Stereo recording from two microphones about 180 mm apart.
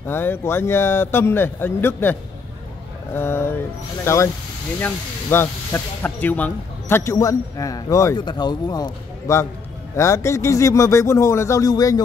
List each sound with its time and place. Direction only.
0.0 s speech: 10° left (ahead or behind)